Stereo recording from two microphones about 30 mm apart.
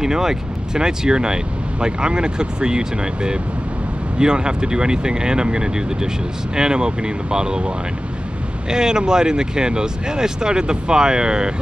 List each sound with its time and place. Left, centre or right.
0.0 s speech: centre